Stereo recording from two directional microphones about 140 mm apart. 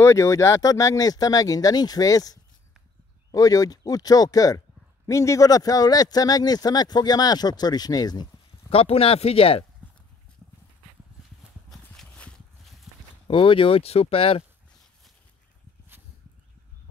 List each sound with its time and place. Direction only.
0.0 s speech: 20° left (ahead or behind)
8.6 s speech: 45° left (ahead or behind)
11.7 s clip-clop: 5° left (ahead or behind)
13.3 s speech: 40° left (ahead or behind)